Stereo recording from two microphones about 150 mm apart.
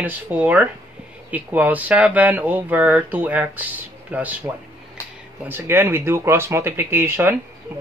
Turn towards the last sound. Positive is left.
turn(degrees=-15)  # may be behind; listen again after turning